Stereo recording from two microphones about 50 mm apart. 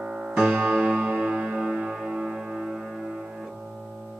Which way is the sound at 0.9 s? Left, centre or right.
Right.